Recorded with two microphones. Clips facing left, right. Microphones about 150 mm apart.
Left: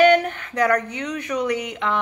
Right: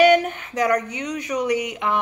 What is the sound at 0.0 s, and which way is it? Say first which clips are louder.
Speech: even; 10° right (ahead or behind).